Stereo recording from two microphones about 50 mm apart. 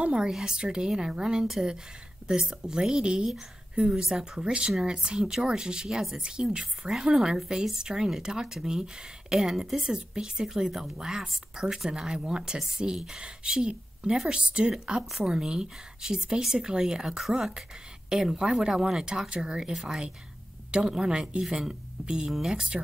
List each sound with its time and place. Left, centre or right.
0.0 s speech: centre
9.8 s speech: centre